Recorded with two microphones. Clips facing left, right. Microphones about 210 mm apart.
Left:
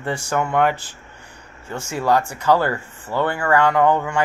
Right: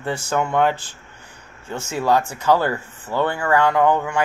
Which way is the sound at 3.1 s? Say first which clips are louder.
Even; 15° right (ahead or behind).